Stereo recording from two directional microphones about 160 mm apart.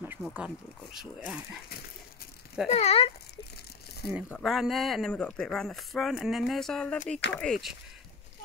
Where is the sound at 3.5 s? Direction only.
90° left.